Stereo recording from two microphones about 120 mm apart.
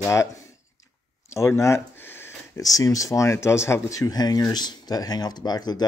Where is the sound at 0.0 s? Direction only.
25° left (ahead or behind).